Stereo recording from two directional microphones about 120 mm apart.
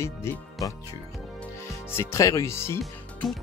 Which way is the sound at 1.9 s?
20° left (ahead or behind).